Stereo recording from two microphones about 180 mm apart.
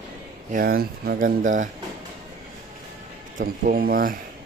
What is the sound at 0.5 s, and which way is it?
Speech, 50° right (ahead or behind).